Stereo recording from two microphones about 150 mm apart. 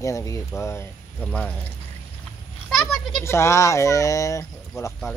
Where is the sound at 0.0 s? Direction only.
20° left (ahead or behind).